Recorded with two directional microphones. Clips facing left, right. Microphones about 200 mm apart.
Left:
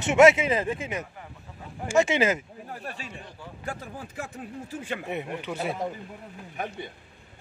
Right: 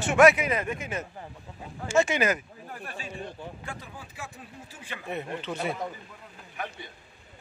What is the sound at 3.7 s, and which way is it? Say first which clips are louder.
Speech: left 5 dB; 45° left (ahead or behind).